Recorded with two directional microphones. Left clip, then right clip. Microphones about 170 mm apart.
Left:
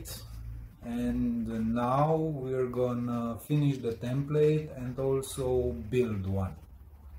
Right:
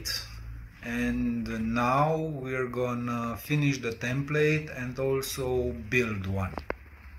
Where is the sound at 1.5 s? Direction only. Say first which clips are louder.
Right 5 dB; 25° right (ahead or behind).